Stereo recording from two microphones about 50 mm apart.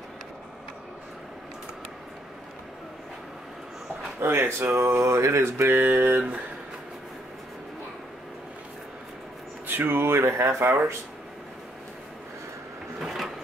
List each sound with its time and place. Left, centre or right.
4.2 s speech: right
5.9 s a sound: right
9.7 s speech: right
13.0 s printer: centre